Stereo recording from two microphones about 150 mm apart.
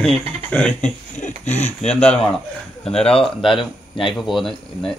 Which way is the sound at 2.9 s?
40° left (ahead or behind).